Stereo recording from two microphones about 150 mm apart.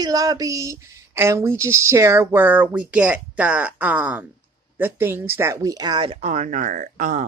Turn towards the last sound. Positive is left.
turn(degrees=-55)  # may be behind; listen again after turning